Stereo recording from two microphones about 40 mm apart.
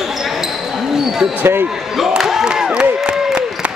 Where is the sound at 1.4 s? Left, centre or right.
Right.